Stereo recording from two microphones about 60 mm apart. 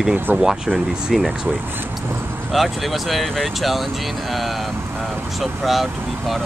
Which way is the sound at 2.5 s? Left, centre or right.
Centre.